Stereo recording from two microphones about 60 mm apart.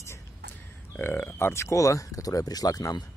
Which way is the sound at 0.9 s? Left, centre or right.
Left.